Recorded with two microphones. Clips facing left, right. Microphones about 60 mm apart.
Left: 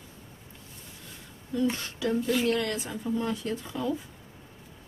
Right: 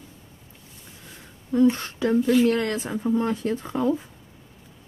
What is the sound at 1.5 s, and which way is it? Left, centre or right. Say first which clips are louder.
Speech: right 9 dB; right.